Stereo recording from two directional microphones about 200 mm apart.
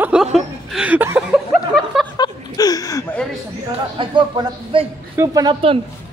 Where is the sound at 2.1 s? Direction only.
20° left (ahead or behind).